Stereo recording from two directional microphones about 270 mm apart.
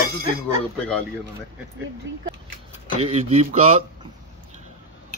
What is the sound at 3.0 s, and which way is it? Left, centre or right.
Speech, right.